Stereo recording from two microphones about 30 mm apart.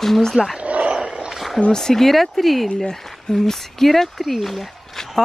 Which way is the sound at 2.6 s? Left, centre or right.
Left.